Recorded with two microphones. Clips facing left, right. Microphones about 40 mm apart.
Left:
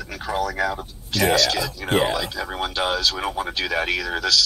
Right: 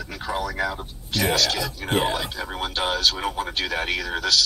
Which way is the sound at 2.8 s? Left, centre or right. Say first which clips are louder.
Right 1 dB; left.